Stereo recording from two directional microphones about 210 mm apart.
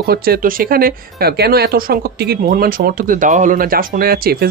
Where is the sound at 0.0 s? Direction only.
45° right (ahead or behind).